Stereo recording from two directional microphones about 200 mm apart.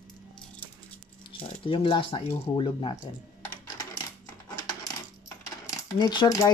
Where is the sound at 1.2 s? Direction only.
25° left (ahead or behind).